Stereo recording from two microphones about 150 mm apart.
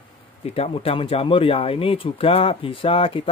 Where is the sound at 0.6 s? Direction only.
40° left (ahead or behind).